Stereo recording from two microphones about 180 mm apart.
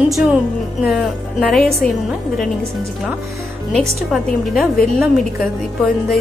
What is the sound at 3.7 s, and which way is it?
A woman's voice, centre (ahead or behind).